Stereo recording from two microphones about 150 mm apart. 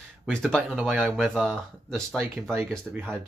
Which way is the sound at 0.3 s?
5° left (ahead or behind).